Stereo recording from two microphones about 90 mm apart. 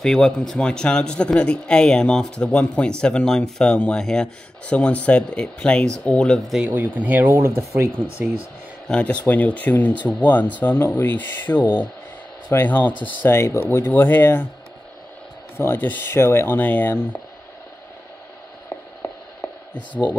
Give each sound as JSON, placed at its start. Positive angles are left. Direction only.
{"t": 0.0, "sound": "speech", "side_deg": 5}
{"t": 6.7, "sound": "speech", "side_deg": -20}
{"t": 8.8, "sound": "speech", "side_deg": 15}
{"t": 13.3, "sound": "speech", "side_deg": 30}
{"t": 15.5, "sound": "speech", "side_deg": 25}